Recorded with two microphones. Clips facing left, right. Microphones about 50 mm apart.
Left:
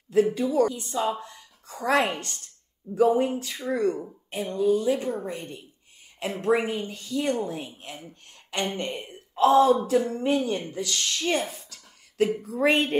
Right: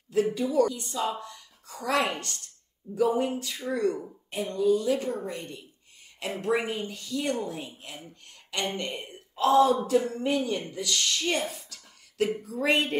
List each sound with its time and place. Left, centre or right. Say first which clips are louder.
0.1 s speech: left 3 dB; left
10.2 s speech: left 3 dB; left
11.3 s a sound: left 2 dB; left
12.4 s speech: left 3 dB; left